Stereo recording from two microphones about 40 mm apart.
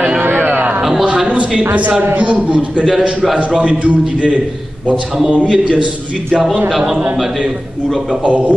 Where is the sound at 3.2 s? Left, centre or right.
Centre.